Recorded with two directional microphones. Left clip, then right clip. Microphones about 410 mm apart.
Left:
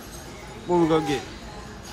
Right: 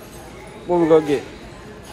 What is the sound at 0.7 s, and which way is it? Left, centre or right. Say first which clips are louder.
Speech: right 6 dB; centre.